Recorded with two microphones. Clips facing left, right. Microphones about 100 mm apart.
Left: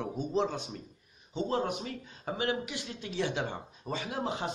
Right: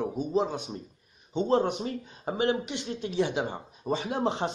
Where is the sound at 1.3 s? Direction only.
25° right (ahead or behind).